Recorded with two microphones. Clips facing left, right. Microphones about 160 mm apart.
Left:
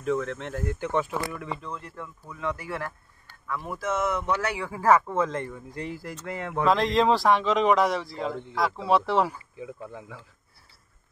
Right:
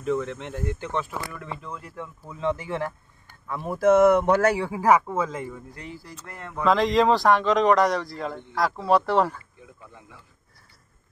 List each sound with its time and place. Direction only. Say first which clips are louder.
0.0 s a man's voice: right 1 dB; centre (ahead or behind)
1.6 s speech: even; 5° right (ahead or behind)
2.0 s speech: right 3 dB; 25° right (ahead or behind)
3.8 s speech: right 12 dB; 60° right (ahead or behind)
4.6 s speech: right 1 dB; 15° right (ahead or behind)
6.2 s speech: left 7 dB; 85° left
6.6 s a man's voice: right 2 dB; centre (ahead or behind)
9.6 s speech: left 9 dB; 90° left